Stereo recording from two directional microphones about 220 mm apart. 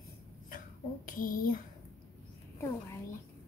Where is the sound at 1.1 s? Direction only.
40° left (ahead or behind).